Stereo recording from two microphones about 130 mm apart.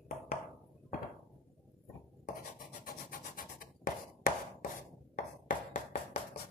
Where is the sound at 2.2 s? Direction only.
85° left.